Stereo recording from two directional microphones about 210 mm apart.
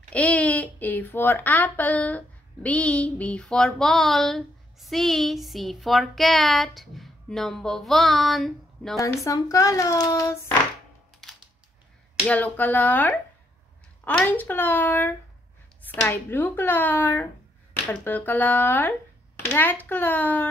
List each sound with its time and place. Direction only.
0.1 s speech: 5° left (ahead or behind)
9.0 s speech: 15° left (ahead or behind)
12.3 s speech: 5° left (ahead or behind)